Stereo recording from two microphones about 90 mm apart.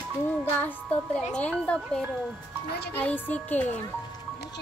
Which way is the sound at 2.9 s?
20° left (ahead or behind).